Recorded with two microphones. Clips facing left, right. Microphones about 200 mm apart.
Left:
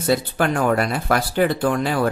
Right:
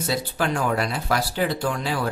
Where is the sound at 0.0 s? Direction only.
55° left (ahead or behind).